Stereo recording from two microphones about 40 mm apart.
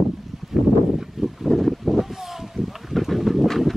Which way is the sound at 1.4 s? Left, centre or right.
Centre.